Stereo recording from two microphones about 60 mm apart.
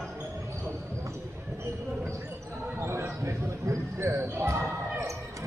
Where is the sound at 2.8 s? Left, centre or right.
Right.